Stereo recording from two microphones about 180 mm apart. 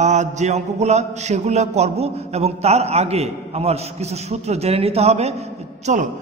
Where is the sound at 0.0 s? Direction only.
40° right (ahead or behind).